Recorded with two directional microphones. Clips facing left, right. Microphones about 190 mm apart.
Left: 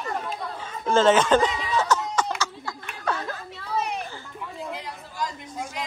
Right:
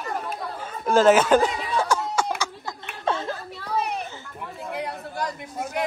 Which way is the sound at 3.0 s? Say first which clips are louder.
Right 3 dB; 25° right (ahead or behind).